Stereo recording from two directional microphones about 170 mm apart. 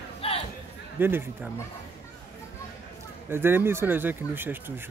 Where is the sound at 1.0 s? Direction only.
15° right (ahead or behind).